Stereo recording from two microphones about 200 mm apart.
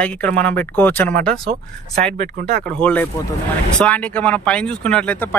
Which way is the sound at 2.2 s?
50° right (ahead or behind).